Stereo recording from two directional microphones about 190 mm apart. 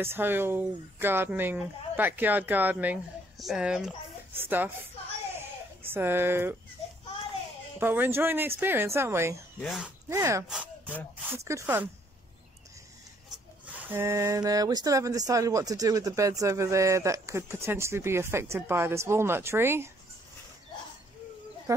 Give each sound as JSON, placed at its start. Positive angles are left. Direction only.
{"t": 0.0, "sound": "speech", "side_deg": -10}
{"t": 5.9, "sound": "speech", "side_deg": -10}
{"t": 7.8, "sound": "speech", "side_deg": -10}
{"t": 9.6, "sound": "speech", "side_deg": 0}
{"t": 10.0, "sound": "speech", "side_deg": -15}
{"t": 13.3, "sound": "speech", "side_deg": -10}
{"t": 21.7, "sound": "a sound", "side_deg": -15}